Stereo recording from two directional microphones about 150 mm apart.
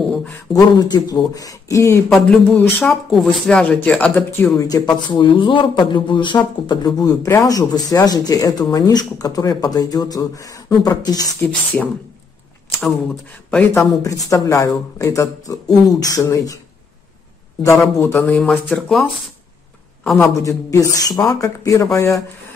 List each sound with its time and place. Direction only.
0.5 s speech: 25° left (ahead or behind)
2.0 s speech: 5° left (ahead or behind)
4.6 s a man's voice: 25° left (ahead or behind)
11.4 s speech: 10° left (ahead or behind)
13.7 s speech: 20° left (ahead or behind)
17.6 s speech: 15° left (ahead or behind)
20.2 s speech: 20° left (ahead or behind)